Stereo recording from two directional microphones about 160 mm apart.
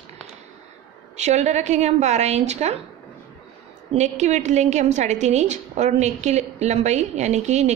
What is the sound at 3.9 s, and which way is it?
A woman's voice, 45° right (ahead or behind).